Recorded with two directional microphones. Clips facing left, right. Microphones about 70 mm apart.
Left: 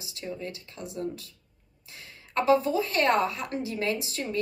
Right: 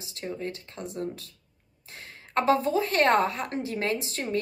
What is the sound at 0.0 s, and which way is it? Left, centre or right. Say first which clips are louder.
A woman's voice: right 2 dB; right.